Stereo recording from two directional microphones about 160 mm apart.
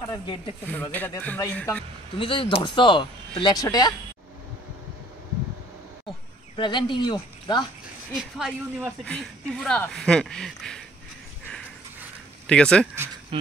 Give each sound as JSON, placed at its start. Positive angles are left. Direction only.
{"t": 0.1, "sound": "speech", "side_deg": 35}
{"t": 0.7, "sound": "speech", "side_deg": 10}
{"t": 2.1, "sound": "speech", "side_deg": 35}
{"t": 6.0, "sound": "a sound", "side_deg": 30}
{"t": 8.1, "sound": "speech", "side_deg": -5}
{"t": 12.4, "sound": "speech", "side_deg": 5}
{"t": 13.3, "sound": "speech", "side_deg": -35}